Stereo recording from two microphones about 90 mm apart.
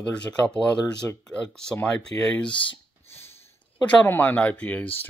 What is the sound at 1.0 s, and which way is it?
Speech, 20° left (ahead or behind).